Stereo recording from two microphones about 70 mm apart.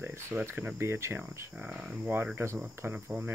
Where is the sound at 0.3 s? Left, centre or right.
Right.